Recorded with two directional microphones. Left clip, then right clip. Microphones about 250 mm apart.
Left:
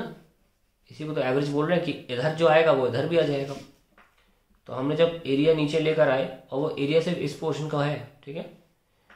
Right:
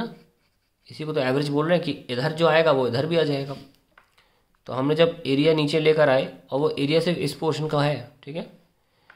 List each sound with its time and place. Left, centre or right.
0.8 s speech: right
4.6 s speech: right